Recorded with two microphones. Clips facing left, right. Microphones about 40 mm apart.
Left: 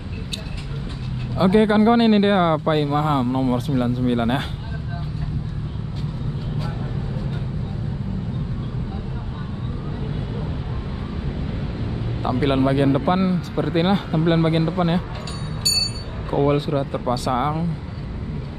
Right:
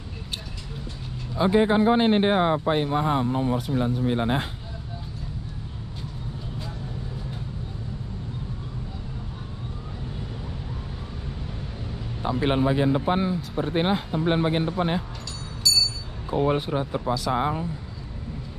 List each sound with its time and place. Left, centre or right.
1.4 s speech: left
12.3 s a sound: left
12.6 s speech: left
16.5 s speech: centre
17.3 s speech: left